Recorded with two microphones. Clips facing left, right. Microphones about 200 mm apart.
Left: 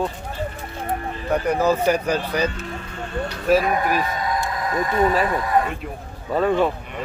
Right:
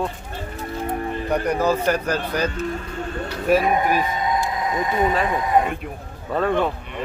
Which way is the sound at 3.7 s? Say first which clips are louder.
Right 1 dB; 20° right (ahead or behind).